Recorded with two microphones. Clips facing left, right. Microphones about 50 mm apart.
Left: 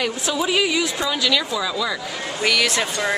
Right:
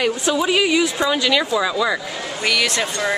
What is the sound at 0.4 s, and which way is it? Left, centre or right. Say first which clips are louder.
Speech: right 2 dB; centre.